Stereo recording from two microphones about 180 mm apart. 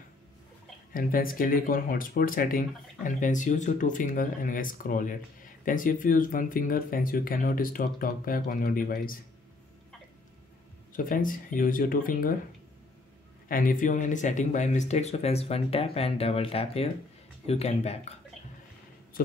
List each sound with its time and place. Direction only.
0.9 s speech: 50° left (ahead or behind)
10.9 s speech: 50° left (ahead or behind)
13.5 s speech: 50° left (ahead or behind)